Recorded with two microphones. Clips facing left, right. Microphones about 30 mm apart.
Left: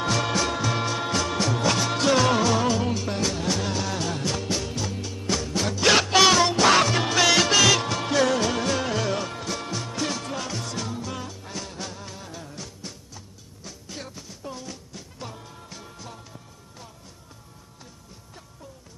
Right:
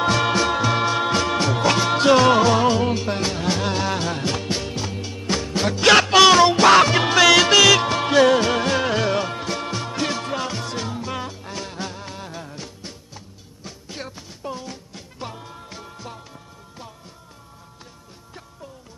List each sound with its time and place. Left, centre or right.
0.0 s music: right
7.2 s music: centre
7.6 s music: right